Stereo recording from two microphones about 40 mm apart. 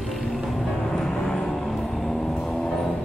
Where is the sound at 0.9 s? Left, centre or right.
Centre.